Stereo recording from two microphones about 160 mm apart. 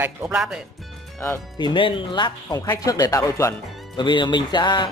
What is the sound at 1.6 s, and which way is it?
Speech, 30° left (ahead or behind).